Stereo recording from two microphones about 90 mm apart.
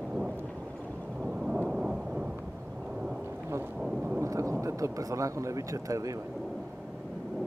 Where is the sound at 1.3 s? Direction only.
10° right (ahead or behind).